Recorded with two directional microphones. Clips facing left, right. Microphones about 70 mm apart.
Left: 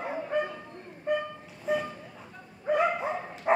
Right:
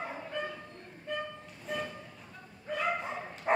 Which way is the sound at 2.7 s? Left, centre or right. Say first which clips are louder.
Left 11 dB; left.